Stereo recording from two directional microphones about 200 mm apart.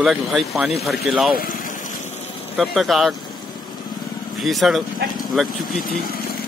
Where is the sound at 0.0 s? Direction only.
Centre (ahead or behind).